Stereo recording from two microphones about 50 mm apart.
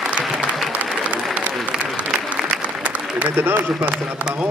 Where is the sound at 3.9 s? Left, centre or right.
Centre.